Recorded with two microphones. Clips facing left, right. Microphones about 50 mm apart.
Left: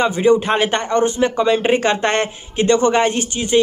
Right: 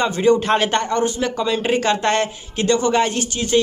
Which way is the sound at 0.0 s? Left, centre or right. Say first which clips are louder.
Left 2 dB; centre.